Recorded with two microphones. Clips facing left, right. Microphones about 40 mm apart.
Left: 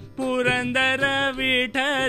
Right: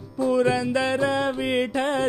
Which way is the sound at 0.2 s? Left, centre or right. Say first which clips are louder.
Right 1 dB; left.